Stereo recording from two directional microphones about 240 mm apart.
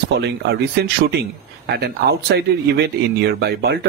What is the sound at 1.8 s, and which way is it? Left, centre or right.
Speech, right.